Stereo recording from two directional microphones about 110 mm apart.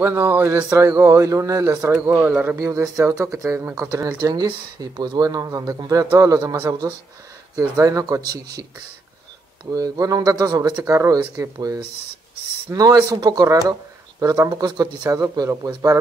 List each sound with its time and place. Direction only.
0.0 s speech: 20° right (ahead or behind)
2.0 s speech: 20° right (ahead or behind)
2.7 s speech: 30° right (ahead or behind)
4.2 s speech: 35° right (ahead or behind)
9.7 s speech: 30° right (ahead or behind)